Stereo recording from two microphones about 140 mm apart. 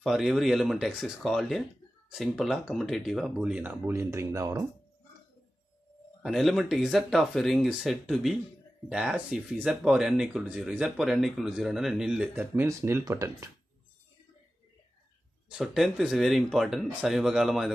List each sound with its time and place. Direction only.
0.0 s speech: centre (ahead or behind); by 4.6 s 20° right (ahead or behind)
6.2 s speech: centre (ahead or behind)
12.4 s speech: 15° right (ahead or behind)
15.5 s speech: centre (ahead or behind)